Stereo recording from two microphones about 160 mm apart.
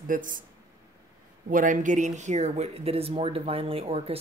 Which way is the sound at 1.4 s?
55° right (ahead or behind).